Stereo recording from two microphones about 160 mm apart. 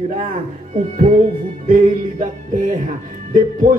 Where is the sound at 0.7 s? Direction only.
55° right (ahead or behind).